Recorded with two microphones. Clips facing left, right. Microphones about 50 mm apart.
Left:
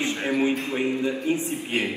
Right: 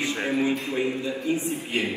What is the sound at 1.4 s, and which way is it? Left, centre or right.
Speech, left.